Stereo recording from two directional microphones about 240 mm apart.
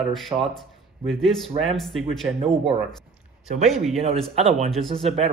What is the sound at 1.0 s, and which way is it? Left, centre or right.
A man's voice, centre.